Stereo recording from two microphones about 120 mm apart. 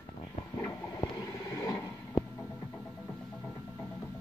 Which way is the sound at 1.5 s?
25° left (ahead or behind).